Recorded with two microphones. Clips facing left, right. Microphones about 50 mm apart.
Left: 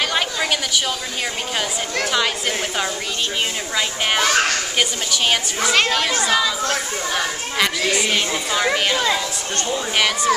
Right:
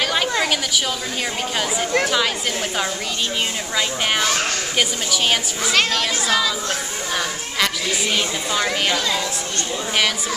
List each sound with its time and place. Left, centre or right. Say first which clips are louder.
0.1 s a sound: right 1 dB; centre
2.0 s speech: even; centre
4.7 s speech: even; centre
8.9 s speech: left 2 dB; left